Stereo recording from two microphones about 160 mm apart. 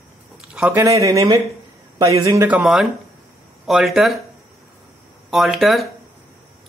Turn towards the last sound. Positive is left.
turn(degrees=0)  # may be behind; listen again after turning